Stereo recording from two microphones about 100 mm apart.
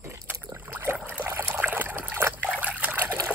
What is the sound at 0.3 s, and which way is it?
Rowboat, 20° right (ahead or behind).